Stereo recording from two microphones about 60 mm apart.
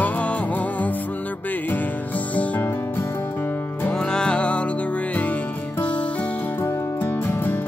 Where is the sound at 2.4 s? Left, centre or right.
Left.